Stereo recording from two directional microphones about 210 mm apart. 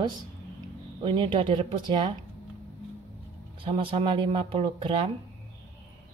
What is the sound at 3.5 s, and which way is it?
Speech, 25° right (ahead or behind).